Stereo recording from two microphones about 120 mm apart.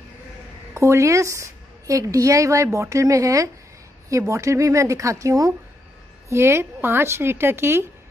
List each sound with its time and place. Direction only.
0.7 s a woman's voice: 25° right (ahead or behind)